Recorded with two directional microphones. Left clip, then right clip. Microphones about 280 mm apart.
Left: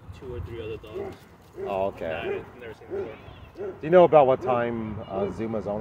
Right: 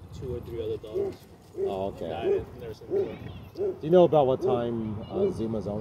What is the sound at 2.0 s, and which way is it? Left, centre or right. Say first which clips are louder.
Speech: right 2 dB; left.